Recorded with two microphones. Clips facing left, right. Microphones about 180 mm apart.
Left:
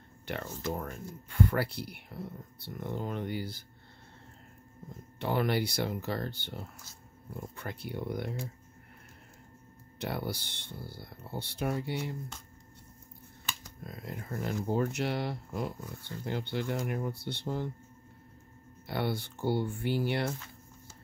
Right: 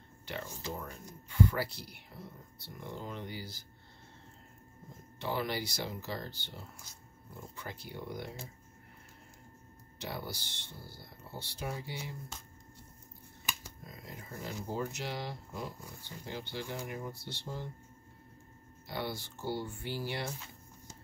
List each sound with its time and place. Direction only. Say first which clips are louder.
0.3 s speech: left 5 dB; 55° left (ahead or behind)
5.2 s speech: left 6 dB; 55° left (ahead or behind)
9.9 s speech: left 6 dB; 60° left (ahead or behind)
13.8 s speech: left 8 dB; 60° left (ahead or behind)
18.9 s speech: left 6 dB; 60° left (ahead or behind)